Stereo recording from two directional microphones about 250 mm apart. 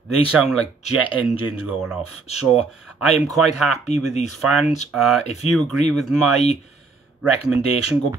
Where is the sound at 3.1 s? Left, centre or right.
Centre.